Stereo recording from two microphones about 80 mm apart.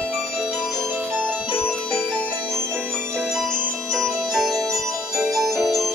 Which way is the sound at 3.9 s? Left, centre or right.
Centre.